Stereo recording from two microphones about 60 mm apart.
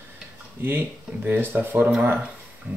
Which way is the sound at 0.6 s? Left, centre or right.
Right.